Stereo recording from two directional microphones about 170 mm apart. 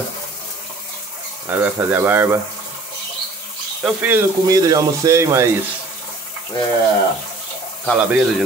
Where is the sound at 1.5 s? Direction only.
10° right (ahead or behind).